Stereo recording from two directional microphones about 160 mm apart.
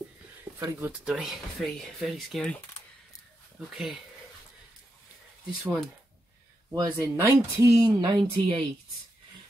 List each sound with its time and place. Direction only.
0.6 s speech: 15° right (ahead or behind)
1.0 s speech: centre (ahead or behind)
3.5 s speech: 5° right (ahead or behind)
5.6 s speech: centre (ahead or behind)
6.7 s speech: 15° right (ahead or behind)